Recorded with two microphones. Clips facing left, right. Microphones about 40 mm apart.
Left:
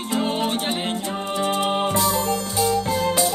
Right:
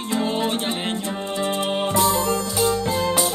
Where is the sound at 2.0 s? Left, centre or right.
Right.